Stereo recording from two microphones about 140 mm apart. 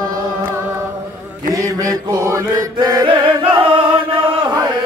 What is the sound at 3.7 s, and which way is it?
Chant, 35° right (ahead or behind).